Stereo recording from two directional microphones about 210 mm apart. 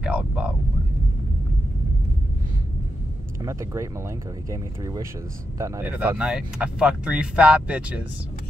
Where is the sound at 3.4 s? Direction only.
15° right (ahead or behind).